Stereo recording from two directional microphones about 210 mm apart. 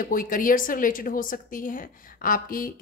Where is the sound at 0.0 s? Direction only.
40° left (ahead or behind).